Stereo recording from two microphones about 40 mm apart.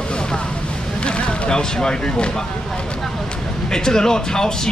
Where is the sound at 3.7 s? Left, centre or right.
Centre.